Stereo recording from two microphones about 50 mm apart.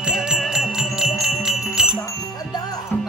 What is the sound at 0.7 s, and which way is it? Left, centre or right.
Music, centre.